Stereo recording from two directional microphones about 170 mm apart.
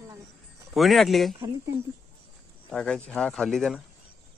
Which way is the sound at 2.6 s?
5° left (ahead or behind).